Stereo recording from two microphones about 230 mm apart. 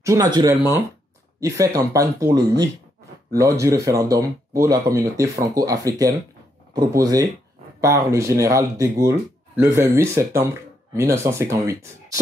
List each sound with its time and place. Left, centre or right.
0.0 s speech: centre